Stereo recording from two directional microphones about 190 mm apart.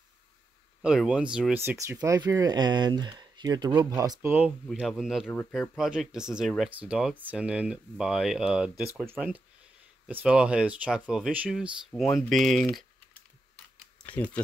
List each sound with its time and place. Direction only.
0.8 s speech: 5° right (ahead or behind)
4.6 s speech: centre (ahead or behind)
14.0 s speech: 5° left (ahead or behind)